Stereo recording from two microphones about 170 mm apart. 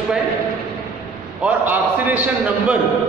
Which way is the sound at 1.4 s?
10° right (ahead or behind).